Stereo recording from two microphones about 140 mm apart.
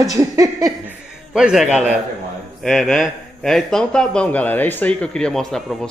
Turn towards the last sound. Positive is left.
turn(degrees=5)  # may be behind; listen again after turning